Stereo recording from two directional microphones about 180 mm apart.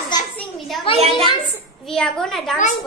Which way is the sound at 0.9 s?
35° right (ahead or behind).